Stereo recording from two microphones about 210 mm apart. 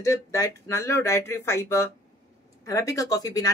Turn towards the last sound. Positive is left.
turn(degrees=15)  # may be behind; listen again after turning